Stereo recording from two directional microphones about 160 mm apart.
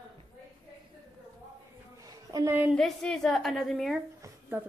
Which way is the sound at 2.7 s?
5° left (ahead or behind).